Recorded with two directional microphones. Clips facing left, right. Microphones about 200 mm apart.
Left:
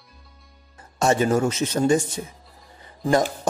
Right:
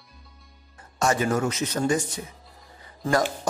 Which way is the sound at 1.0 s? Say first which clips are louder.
Left 4 dB; 25° left (ahead or behind).